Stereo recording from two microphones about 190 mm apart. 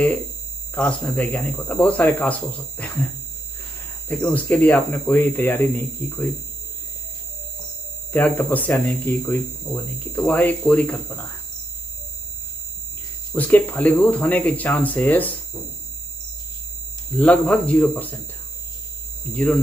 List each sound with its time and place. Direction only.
0.7 s speech: 5° left (ahead or behind)
4.1 s speech: 10° left (ahead or behind)
8.1 s speech: 10° left (ahead or behind)
13.3 s speech: 10° left (ahead or behind)
17.2 s speech: 5° left (ahead or behind)
19.3 s speech: 10° left (ahead or behind)